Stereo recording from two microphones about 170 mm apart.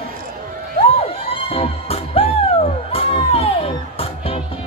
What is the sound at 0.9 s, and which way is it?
Music, 35° left (ahead or behind).